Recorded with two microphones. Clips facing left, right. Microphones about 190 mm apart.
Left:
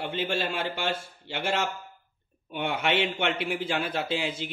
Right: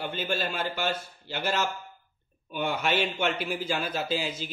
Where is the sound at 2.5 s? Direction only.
80° left.